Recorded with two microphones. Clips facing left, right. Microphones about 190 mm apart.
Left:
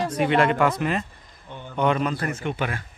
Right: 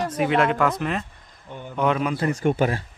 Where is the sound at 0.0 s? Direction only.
Centre (ahead or behind).